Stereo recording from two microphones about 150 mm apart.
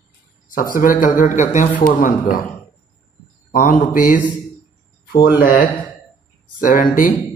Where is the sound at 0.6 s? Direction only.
65° left (ahead or behind).